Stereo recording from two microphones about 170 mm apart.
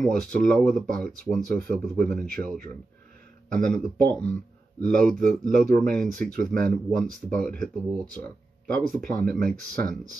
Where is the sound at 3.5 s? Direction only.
5° left (ahead or behind).